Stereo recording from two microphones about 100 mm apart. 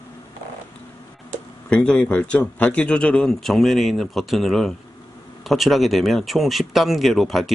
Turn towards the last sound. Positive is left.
turn(degrees=0)  # may be behind; listen again after turning